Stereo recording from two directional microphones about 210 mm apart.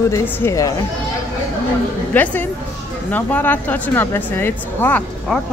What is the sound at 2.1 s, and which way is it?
A woman's voice, 10° left (ahead or behind).